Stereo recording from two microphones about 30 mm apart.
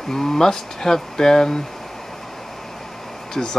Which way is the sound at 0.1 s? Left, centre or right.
Centre.